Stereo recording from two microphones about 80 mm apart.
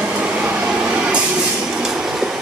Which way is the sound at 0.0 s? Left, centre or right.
Centre.